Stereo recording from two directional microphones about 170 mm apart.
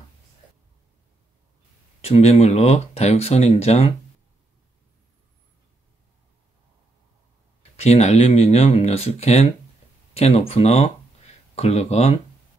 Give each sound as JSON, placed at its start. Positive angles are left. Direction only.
{"t": 2.0, "sound": "speech", "side_deg": 35}
{"t": 7.7, "sound": "speech", "side_deg": 40}